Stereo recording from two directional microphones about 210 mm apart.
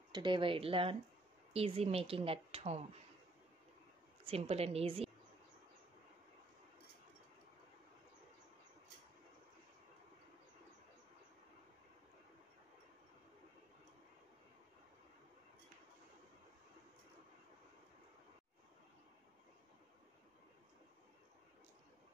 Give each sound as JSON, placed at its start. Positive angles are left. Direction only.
{"t": 0.1, "sound": "speech", "side_deg": -20}
{"t": 4.2, "sound": "a woman's voice", "side_deg": -25}